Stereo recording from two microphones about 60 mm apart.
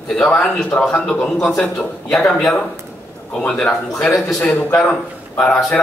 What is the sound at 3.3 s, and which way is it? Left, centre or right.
Speech, centre.